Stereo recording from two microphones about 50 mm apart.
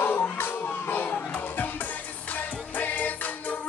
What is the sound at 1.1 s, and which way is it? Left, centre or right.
Music, left.